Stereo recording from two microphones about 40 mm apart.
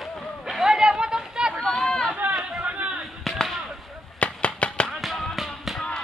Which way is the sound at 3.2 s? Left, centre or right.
Centre.